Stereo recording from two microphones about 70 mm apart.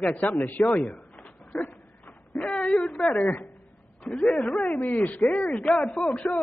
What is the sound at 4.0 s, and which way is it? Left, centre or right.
A man's voice, centre.